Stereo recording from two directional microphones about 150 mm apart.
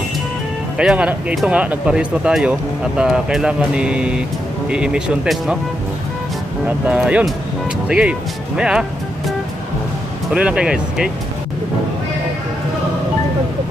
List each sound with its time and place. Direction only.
0.7 s speech: 5° right (ahead or behind)
6.9 s speech: 10° right (ahead or behind)
10.3 s speech: 5° right (ahead or behind)